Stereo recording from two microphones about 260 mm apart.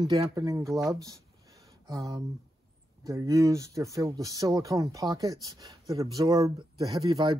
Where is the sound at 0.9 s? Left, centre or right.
Centre.